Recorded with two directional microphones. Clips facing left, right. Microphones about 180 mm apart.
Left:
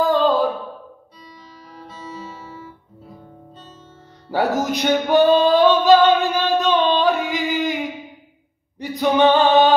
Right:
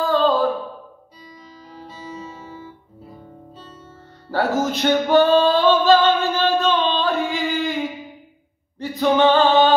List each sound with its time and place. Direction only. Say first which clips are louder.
0.0 s a sound: left 1 dB; 15° left (ahead or behind)
2.0 s guitar: left 1 dB; 15° right (ahead or behind)
4.3 s music: left 1 dB; 15° left (ahead or behind)
8.7 s singing: even; 15° left (ahead or behind)